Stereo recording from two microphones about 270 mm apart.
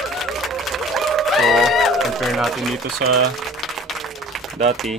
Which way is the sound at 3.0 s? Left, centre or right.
Right.